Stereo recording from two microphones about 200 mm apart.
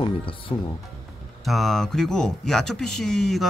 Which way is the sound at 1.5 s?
Centre (ahead or behind).